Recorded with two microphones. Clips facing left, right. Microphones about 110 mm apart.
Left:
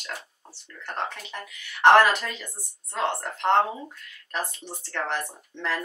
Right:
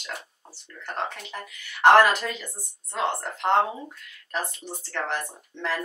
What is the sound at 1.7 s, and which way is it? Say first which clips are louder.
Speech: even; 5° right (ahead or behind).